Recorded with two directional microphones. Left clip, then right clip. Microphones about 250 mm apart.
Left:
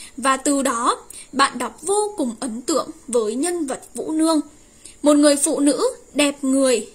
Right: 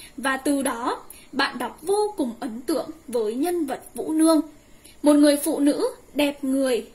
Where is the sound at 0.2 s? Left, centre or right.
Left.